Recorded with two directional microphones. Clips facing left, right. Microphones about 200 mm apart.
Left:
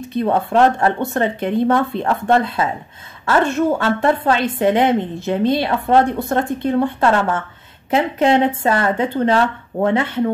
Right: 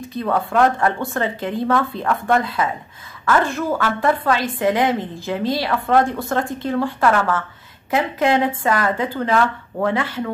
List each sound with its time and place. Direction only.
0.1 s speech: 25° left (ahead or behind)